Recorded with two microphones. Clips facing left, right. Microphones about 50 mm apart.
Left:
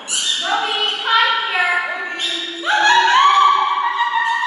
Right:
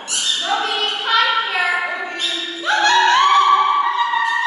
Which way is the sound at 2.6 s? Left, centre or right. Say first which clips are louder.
Left 1 dB; centre.